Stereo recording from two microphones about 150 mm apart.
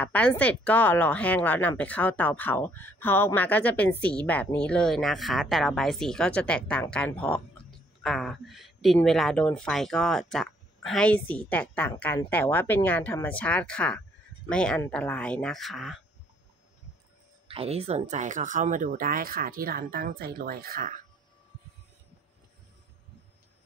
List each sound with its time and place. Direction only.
0.0 s speech: 10° left (ahead or behind)
17.5 s speech: 40° right (ahead or behind); by 21.0 s 70° right (ahead or behind)